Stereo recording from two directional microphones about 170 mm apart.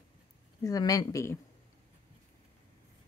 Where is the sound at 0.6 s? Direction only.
20° left (ahead or behind).